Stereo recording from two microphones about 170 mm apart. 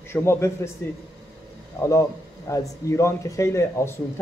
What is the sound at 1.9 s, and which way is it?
A man's voice, 20° left (ahead or behind).